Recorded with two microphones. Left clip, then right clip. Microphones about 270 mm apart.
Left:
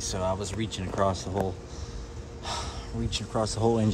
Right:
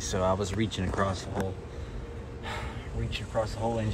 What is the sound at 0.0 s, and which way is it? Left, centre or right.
Speech, centre.